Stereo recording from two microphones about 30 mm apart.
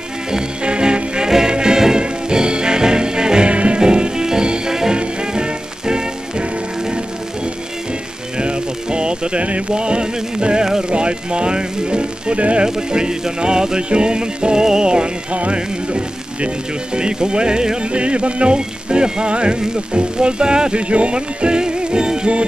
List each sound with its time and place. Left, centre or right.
0.7 s music: right
3.4 s music: right
3.8 s music: right
8.4 s music: right
9.7 s speech: right
10.6 s speech: right
10.9 s speech: right
12.4 s speech: right
12.6 s speech: right
17.9 s speech: right